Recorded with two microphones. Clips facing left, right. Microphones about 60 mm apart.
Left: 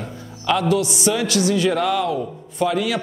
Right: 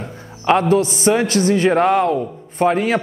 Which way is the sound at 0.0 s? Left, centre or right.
Right.